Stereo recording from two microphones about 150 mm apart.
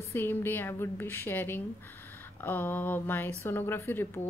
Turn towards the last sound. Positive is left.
turn(degrees=15)  # may be behind; listen again after turning